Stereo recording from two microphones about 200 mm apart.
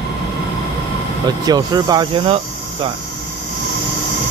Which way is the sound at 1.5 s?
20° right (ahead or behind).